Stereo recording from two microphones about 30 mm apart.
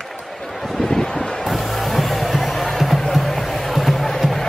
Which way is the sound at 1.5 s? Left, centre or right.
Centre.